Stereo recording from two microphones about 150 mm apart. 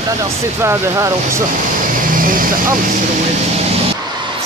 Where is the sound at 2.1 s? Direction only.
65° right (ahead or behind).